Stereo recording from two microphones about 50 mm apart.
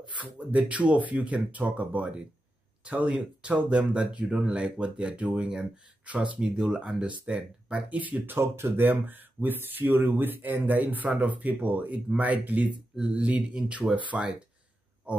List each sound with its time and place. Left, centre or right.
0.2 s speech: right
6.6 s speech: centre
8.0 s speech: right
8.4 s speech: right